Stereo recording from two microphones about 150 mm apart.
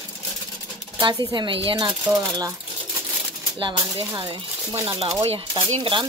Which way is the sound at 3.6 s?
30° right (ahead or behind).